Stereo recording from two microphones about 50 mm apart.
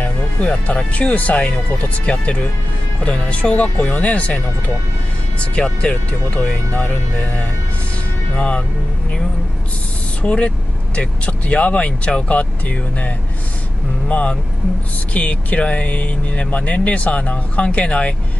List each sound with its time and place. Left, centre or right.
0.0 s speech: left
5.4 s speech: left
6.7 s speech: left
10.2 s speech: left